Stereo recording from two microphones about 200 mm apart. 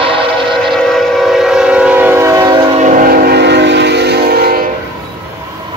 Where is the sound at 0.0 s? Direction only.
25° right (ahead or behind).